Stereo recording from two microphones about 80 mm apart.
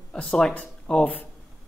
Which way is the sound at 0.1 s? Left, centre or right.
Centre.